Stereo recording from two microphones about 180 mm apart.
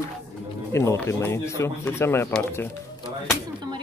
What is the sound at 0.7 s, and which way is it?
Speech, 15° left (ahead or behind).